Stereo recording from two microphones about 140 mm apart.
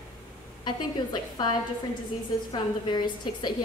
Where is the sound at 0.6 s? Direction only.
30° left (ahead or behind).